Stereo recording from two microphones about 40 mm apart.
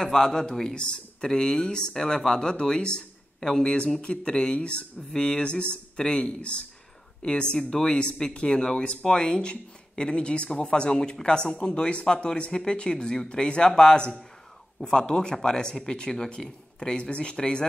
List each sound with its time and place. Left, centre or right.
0.0 s speech: centre
16.9 s speech: left